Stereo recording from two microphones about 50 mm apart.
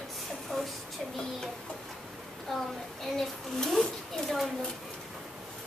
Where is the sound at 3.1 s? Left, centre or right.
Centre.